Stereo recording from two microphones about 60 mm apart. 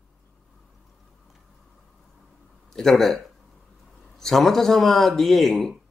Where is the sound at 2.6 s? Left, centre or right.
Centre.